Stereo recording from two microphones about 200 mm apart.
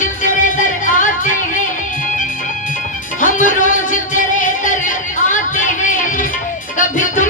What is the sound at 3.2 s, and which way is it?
Music, 40° left (ahead or behind).